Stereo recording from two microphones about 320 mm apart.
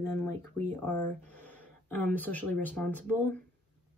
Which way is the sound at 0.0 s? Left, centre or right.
Centre.